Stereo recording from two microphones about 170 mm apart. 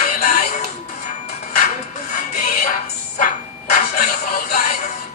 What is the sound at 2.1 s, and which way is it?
Music, 50° left (ahead or behind).